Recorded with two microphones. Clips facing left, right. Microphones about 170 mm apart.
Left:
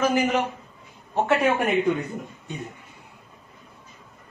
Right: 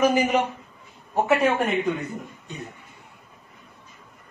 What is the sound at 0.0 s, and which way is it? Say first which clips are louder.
Speech: right 2 dB; 15° right (ahead or behind).